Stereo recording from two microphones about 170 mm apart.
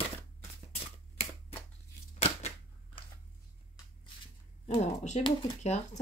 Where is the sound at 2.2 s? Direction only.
35° left (ahead or behind).